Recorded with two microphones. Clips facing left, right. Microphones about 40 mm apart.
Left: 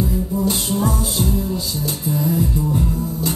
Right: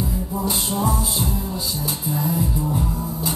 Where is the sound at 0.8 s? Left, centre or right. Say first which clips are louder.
Left 2 dB; centre.